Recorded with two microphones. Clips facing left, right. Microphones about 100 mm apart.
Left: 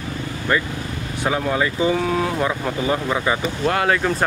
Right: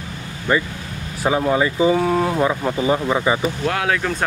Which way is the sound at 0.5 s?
10° right (ahead or behind).